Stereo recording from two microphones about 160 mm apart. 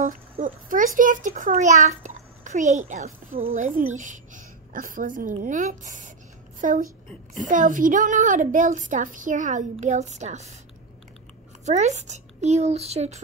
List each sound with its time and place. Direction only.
0.0 s a child's voice: 55° right (ahead or behind)
11.6 s a woman's voice: 45° right (ahead or behind)